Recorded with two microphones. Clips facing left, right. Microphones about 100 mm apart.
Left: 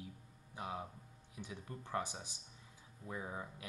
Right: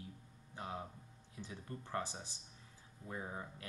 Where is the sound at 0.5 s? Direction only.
15° left (ahead or behind).